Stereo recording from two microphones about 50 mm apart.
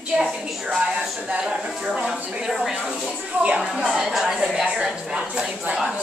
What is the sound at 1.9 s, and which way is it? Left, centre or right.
Speech, centre.